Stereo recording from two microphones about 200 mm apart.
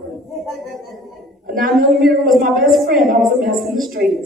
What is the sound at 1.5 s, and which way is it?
A woman's voice, 45° right (ahead or behind).